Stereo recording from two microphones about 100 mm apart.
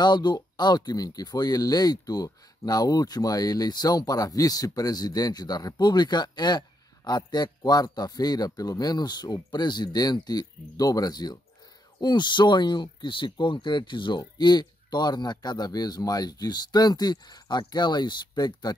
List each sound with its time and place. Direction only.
0.0 s speech: 45° left (ahead or behind)